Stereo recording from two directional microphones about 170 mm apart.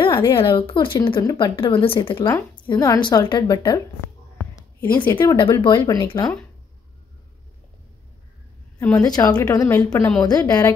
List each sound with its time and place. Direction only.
0.0 s speech: 30° left (ahead or behind)
2.2 s speech: 15° left (ahead or behind)
5.2 s speech: 25° left (ahead or behind)
8.7 s a woman's voice: 10° left (ahead or behind)
9.0 s speech: 25° left (ahead or behind)